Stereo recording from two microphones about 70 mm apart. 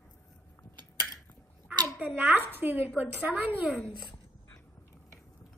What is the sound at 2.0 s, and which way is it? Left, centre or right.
A woman's voice, right.